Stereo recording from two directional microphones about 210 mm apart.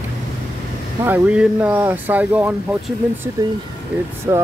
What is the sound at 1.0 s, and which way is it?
Speech, 10° right (ahead or behind).